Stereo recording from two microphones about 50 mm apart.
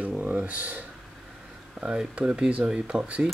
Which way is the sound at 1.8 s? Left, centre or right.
Centre.